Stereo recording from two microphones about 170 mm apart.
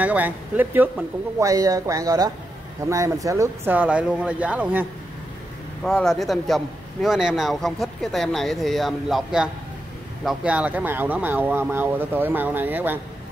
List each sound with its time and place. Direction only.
0.0 s speech: 10° right (ahead or behind)
5.9 s a man's voice: centre (ahead or behind)